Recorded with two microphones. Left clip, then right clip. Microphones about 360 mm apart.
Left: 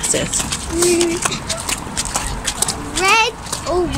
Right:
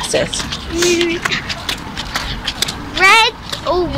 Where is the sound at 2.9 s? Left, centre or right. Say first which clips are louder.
Right 5 dB; centre.